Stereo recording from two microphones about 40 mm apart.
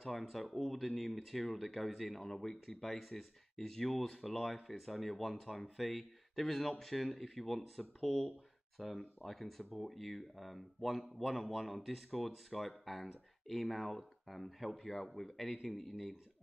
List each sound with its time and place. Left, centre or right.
0.0 s speech: centre